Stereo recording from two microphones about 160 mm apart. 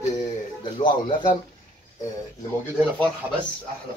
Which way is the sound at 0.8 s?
30° left (ahead or behind).